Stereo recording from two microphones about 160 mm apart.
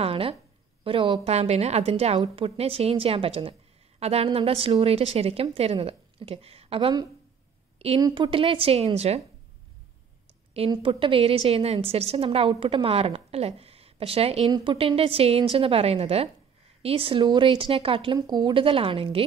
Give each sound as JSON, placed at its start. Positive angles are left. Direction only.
{"t": 0.0, "sound": "a sound", "side_deg": -35}
{"t": 0.8, "sound": "a woman's voice", "side_deg": -35}
{"t": 10.7, "sound": "a woman's voice", "side_deg": -30}